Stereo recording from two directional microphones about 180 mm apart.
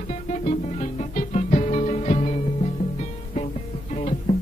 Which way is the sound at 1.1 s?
40° left (ahead or behind).